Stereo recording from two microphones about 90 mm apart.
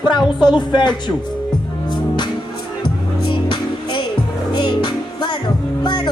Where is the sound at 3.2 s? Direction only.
60° left (ahead or behind).